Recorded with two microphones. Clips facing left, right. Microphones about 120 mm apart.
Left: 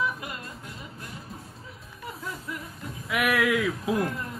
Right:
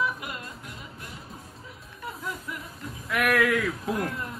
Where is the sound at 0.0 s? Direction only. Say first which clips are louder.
Even; 30° left (ahead or behind).